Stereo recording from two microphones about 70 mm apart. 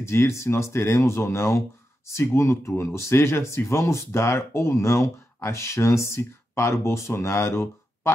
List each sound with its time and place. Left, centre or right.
0.0 s speech: left